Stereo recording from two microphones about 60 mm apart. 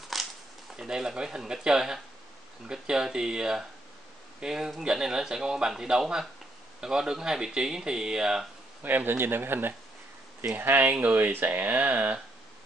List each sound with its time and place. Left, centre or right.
0.1 s a sound: centre
0.7 s speech: centre
8.8 s speech: right